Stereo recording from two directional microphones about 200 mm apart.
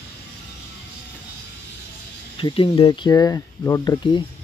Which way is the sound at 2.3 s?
25° left (ahead or behind).